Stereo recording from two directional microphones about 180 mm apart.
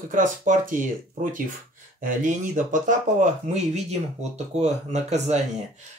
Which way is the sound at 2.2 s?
45° right (ahead or behind).